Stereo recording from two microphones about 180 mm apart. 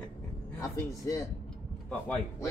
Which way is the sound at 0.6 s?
15° left (ahead or behind).